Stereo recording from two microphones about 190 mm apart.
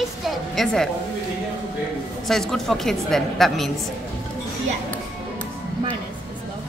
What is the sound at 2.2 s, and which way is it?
A child's voice, centre (ahead or behind).